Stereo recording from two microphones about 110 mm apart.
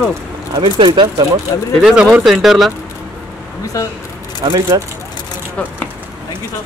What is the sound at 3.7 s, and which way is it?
Speech, 30° left (ahead or behind).